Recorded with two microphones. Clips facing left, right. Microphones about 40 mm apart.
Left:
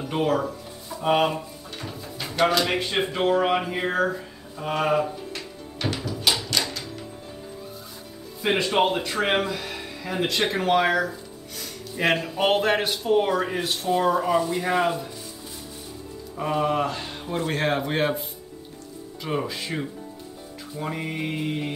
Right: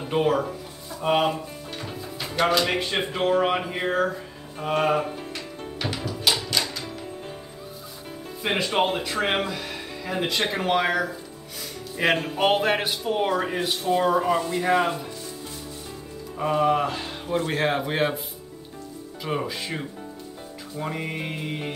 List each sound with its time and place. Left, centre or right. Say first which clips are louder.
0.1 s speech: right 1 dB; centre
0.4 s music: right 1 dB; centre
2.0 s speech: left 2 dB; centre
4.9 s music: left 2 dB; right
5.3 s music: right 2 dB; centre
8.4 s speech: left 2 dB; centre
16.3 s speech: right 2 dB; centre
19.2 s speech: even; centre